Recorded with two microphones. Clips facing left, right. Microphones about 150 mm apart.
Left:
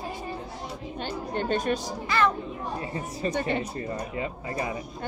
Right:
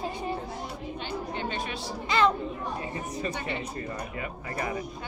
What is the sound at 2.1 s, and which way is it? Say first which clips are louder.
Speech: right 1 dB; 20° right (ahead or behind).